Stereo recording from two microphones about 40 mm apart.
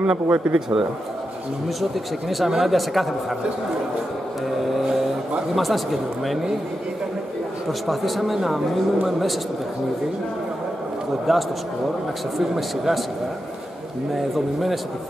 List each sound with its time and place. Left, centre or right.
0.0 s speech: right
1.8 s speech: centre
5.6 s speech: centre
7.8 s speech: centre
11.3 s speech: centre
14.1 s speech: centre